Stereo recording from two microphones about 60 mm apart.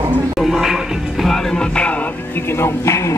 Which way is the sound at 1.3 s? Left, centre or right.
Centre.